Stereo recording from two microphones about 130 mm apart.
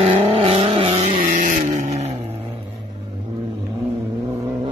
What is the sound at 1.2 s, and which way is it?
Vehicle, 80° right.